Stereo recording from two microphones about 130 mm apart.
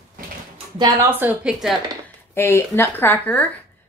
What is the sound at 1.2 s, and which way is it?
Speech, 5° right (ahead or behind).